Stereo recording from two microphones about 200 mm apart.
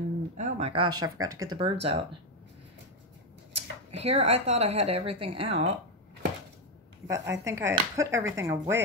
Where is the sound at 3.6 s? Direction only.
30° right (ahead or behind).